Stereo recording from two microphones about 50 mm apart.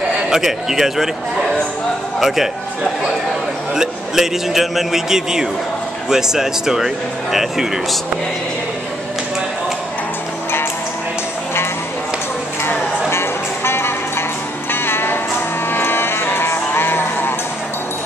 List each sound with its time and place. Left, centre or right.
0.3 s a man's voice: centre
2.1 s speech: centre
3.7 s a man's voice: centre
13.1 s music: left